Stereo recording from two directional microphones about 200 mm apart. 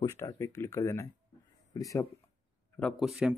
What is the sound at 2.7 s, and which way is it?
Speech, centre (ahead or behind).